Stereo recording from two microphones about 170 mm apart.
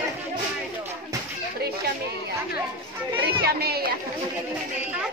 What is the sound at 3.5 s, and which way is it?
Speech, 65° right (ahead or behind).